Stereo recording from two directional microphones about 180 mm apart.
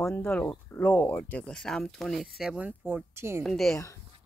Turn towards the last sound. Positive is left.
turn(degrees=0)  # may be behind; listen again after turning